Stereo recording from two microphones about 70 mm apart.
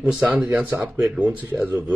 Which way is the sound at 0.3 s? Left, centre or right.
Right.